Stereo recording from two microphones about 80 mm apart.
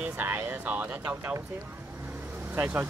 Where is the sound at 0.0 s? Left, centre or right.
Right.